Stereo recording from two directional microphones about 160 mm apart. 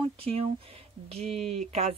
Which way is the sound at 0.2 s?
35° right (ahead or behind).